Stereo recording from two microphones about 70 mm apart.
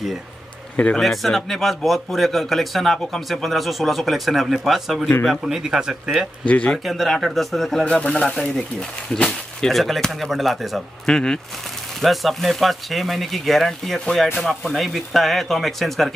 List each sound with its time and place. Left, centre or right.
0.9 s speech: centre
6.4 s speech: centre
6.8 s speech: centre